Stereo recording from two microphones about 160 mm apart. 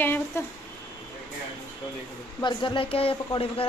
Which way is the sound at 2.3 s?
30° left (ahead or behind).